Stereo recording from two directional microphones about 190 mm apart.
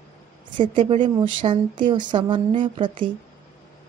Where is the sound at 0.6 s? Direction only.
25° right (ahead or behind).